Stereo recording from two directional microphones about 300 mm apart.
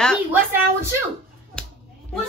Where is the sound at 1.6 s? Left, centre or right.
Centre.